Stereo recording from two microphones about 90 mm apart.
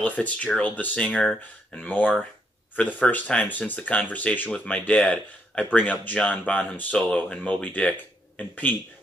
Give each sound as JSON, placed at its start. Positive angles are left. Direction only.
{"t": 0.0, "sound": "speech", "side_deg": 15}